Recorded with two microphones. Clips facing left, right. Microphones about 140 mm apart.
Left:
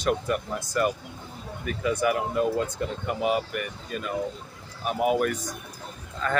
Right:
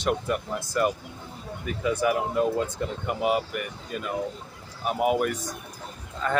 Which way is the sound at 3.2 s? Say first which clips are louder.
Right 1 dB; 20° right (ahead or behind).